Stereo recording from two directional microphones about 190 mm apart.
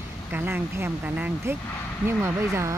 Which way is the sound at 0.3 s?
10° right (ahead or behind).